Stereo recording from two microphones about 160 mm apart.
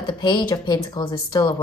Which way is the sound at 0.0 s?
30° left (ahead or behind).